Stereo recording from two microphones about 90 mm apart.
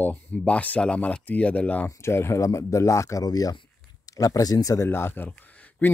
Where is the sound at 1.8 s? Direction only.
30° left (ahead or behind).